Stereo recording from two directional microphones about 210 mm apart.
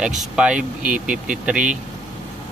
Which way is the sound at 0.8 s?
40° right (ahead or behind).